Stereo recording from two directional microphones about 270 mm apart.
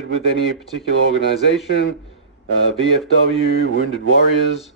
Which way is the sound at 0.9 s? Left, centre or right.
Left.